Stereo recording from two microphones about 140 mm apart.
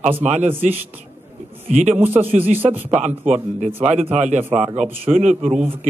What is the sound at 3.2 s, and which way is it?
A man's voice, 65° right (ahead or behind).